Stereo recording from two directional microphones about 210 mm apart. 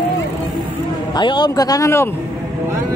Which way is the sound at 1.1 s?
20° left (ahead or behind).